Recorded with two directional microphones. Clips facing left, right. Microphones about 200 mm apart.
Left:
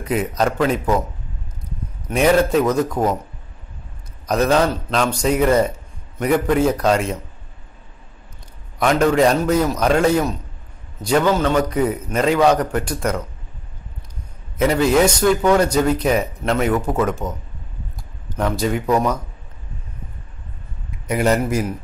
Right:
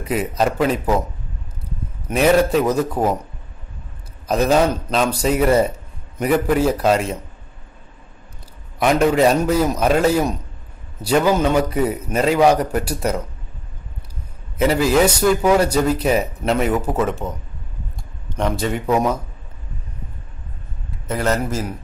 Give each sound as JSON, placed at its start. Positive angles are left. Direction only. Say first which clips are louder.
{"t": 0.4, "sound": "speech", "louder": "right 1 dB", "side_deg": -5}
{"t": 2.0, "sound": "a man's voice", "louder": "right 1 dB", "side_deg": 0}
{"t": 4.3, "sound": "a man's voice", "louder": "right 1 dB", "side_deg": -5}
{"t": 8.7, "sound": "a man's voice", "louder": "even", "side_deg": -5}
{"t": 14.6, "sound": "speech", "louder": "even", "side_deg": -5}
{"t": 18.3, "sound": "speech", "louder": "left 1 dB", "side_deg": 0}
{"t": 21.1, "sound": "a man's voice", "louder": "left 3 dB", "side_deg": 15}